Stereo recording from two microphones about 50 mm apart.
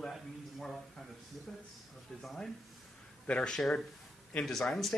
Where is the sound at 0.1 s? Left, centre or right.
Centre.